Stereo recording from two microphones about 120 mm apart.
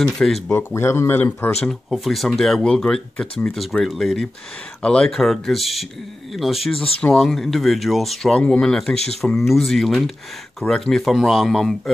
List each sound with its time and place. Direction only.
0.0 s speech: 5° left (ahead or behind)
0.5 s speech: 20° left (ahead or behind)
1.9 s speech: centre (ahead or behind)